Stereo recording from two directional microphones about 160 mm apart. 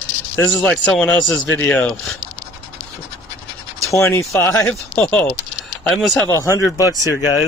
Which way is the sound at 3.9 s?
15° left (ahead or behind).